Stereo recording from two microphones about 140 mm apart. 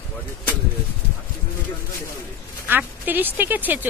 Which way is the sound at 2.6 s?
15° right (ahead or behind).